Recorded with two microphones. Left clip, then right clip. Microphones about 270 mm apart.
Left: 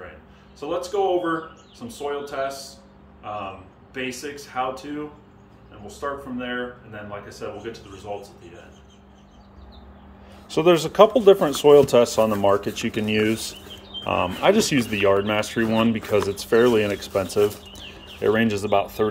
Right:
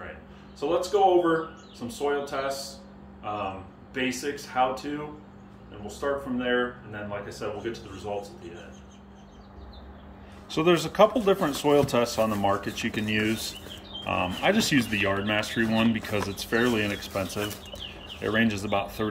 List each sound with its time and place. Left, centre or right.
0.6 s speech: centre
5.9 s speech: centre
10.5 s speech: left